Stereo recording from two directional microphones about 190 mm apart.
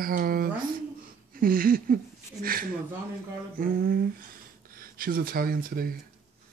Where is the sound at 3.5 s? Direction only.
50° right (ahead or behind).